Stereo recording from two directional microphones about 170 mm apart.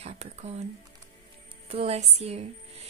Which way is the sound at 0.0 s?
40° right (ahead or behind).